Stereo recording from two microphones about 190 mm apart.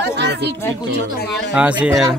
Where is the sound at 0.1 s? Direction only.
65° right (ahead or behind).